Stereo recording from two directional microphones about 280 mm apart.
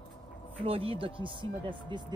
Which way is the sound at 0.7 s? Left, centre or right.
Centre.